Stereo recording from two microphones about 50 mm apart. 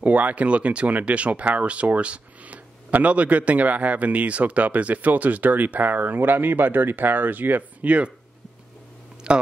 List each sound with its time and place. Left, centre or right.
0.0 s speech: right
9.3 s speech: right